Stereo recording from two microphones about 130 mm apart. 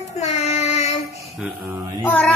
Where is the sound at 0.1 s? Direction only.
60° left (ahead or behind).